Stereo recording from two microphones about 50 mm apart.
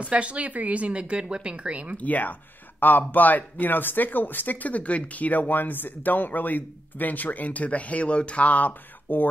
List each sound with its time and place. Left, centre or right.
0.0 s speech: right
2.0 s speech: left